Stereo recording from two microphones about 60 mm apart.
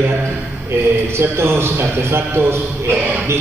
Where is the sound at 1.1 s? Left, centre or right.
Right.